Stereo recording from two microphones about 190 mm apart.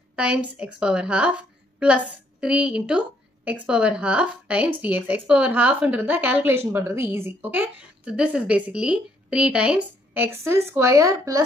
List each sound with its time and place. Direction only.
0.1 s a woman's voice: 5° right (ahead or behind)